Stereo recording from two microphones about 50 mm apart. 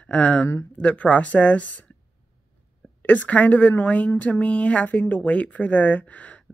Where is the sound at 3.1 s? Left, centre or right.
Left.